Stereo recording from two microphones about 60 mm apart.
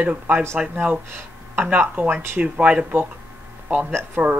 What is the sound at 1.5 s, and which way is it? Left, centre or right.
Speech, right.